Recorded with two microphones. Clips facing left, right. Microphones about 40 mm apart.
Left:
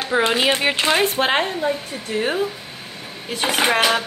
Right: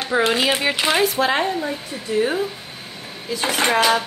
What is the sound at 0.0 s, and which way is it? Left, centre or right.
Speech, centre.